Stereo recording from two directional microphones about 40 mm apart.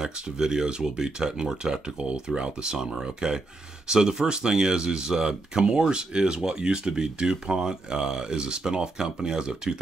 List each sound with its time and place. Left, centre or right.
0.0 s speech: centre